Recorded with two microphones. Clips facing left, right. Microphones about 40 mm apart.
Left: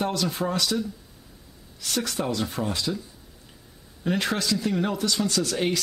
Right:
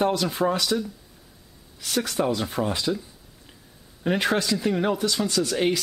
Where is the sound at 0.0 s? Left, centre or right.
Centre.